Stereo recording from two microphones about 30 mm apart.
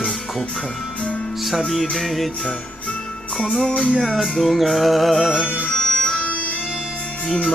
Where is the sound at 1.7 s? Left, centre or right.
Centre.